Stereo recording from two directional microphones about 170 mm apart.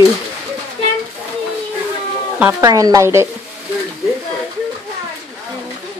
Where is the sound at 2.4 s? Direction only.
15° right (ahead or behind).